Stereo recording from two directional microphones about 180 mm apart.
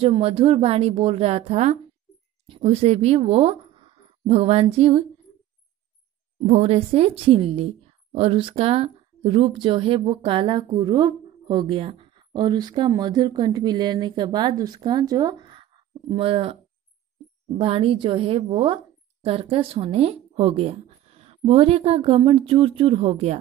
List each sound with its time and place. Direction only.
0.0 s speech: 30° right (ahead or behind)
6.4 s a woman's voice: 35° right (ahead or behind)